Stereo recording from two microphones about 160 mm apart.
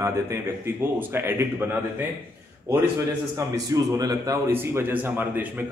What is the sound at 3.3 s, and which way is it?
A man's voice, 20° right (ahead or behind).